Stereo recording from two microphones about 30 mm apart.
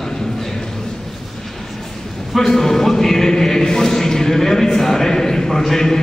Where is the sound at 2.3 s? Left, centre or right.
Centre.